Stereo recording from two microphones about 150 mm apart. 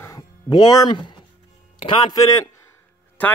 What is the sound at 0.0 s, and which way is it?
Music, 25° left (ahead or behind).